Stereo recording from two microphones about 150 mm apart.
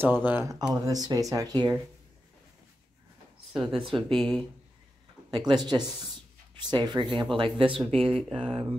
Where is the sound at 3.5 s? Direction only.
Centre (ahead or behind).